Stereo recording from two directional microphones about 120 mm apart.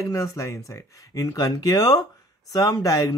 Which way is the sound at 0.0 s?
25° left (ahead or behind).